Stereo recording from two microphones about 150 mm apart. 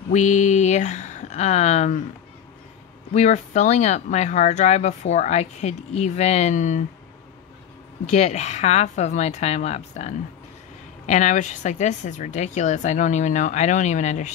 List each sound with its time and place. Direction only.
0.1 s speech: 55° left (ahead or behind)
3.1 s speech: 50° left (ahead or behind)
8.1 s speech: 45° left (ahead or behind)